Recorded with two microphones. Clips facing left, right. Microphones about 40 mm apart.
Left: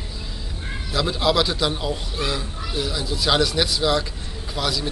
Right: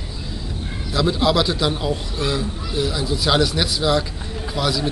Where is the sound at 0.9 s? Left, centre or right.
Centre.